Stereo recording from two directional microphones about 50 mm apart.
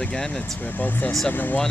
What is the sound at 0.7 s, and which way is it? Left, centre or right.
Speech, left.